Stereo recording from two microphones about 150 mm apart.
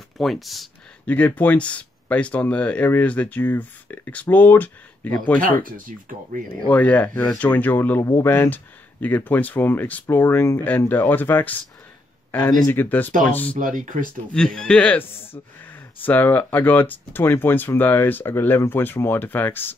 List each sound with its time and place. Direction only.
0.2 s speech: centre (ahead or behind)
5.6 s speech: 65° right (ahead or behind)
6.7 s speech: 10° left (ahead or behind)
13.6 s speech: 65° right (ahead or behind)
14.3 s speech: 5° left (ahead or behind)